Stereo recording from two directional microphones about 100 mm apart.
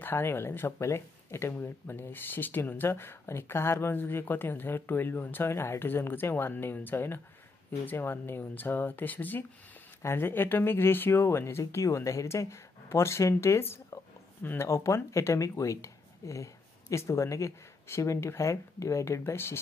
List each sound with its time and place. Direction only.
0.0 s speech: 25° left (ahead or behind)